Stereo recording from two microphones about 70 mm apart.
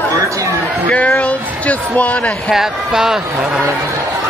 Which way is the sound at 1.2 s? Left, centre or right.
Centre.